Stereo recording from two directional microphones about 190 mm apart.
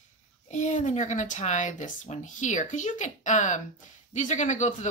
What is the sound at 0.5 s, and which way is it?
Speech, 40° left (ahead or behind).